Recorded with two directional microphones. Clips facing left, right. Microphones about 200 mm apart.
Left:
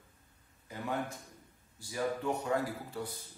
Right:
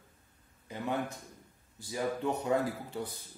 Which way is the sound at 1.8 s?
20° right (ahead or behind).